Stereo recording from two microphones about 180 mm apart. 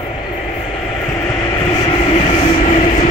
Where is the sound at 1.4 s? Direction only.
20° left (ahead or behind); by 3.1 s 35° left (ahead or behind).